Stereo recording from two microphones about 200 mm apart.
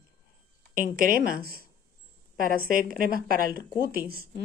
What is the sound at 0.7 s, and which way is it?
A woman's voice, 45° right (ahead or behind).